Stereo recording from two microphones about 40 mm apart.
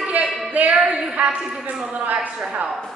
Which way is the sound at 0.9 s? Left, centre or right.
Right.